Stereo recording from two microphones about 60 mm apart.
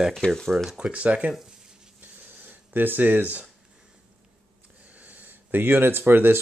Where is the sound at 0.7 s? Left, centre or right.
Centre.